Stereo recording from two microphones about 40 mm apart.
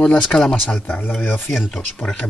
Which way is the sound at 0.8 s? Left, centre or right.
Left.